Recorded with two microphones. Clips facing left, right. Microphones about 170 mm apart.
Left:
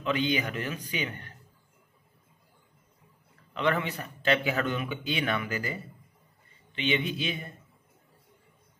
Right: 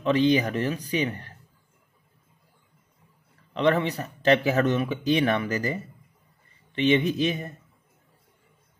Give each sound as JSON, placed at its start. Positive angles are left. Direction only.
{"t": 0.0, "sound": "speech", "side_deg": -40}
{"t": 3.5, "sound": "speech", "side_deg": -35}
{"t": 7.0, "sound": "a man's voice", "side_deg": -45}